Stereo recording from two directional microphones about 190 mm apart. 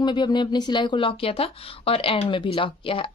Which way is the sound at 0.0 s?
25° left (ahead or behind).